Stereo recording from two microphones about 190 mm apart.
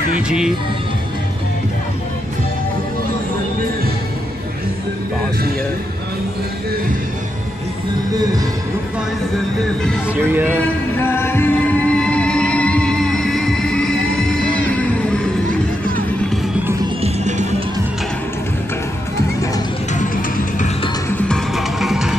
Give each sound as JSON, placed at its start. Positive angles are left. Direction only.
{"t": 0.3, "sound": "music", "side_deg": -5}
{"t": 10.1, "sound": "speech", "side_deg": -10}
{"t": 11.0, "sound": "music", "side_deg": 10}
{"t": 17.0, "sound": "music", "side_deg": -35}
{"t": 19.9, "sound": "music", "side_deg": 40}
{"t": 21.1, "sound": "music", "side_deg": 0}